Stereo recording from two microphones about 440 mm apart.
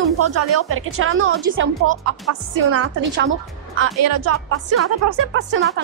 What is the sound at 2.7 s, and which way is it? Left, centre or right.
Speech, right.